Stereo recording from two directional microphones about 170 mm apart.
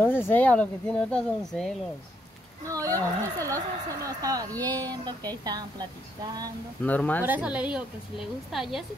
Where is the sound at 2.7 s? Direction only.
20° right (ahead or behind).